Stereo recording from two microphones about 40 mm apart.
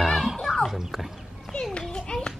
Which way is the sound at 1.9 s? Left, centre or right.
Centre.